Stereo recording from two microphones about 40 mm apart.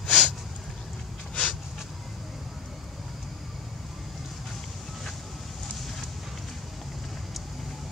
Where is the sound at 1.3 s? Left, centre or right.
Left.